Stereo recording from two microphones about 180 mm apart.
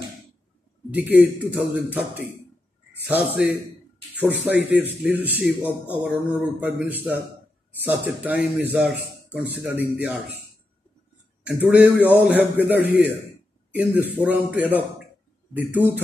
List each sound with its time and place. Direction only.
0.9 s speech: 10° right (ahead or behind)
11.4 s speech: 10° right (ahead or behind)